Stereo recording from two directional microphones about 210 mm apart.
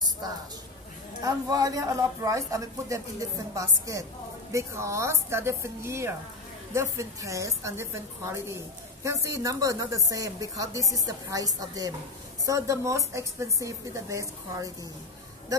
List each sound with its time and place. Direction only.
1.2 s speech: 15° right (ahead or behind)